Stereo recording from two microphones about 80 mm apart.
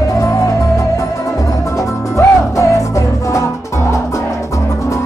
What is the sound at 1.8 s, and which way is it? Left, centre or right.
Music, left.